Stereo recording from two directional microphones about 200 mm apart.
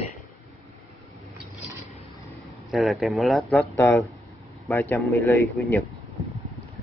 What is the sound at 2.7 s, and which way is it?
Speech, centre (ahead or behind).